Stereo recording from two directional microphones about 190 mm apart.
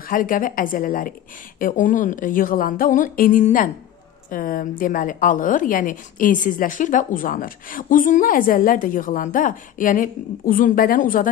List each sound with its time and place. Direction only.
0.1 s a woman's voice: 45° left (ahead or behind)